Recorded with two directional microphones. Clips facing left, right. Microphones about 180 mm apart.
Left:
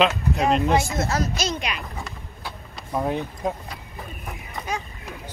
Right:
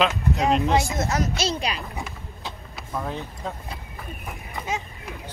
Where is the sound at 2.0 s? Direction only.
15° right (ahead or behind).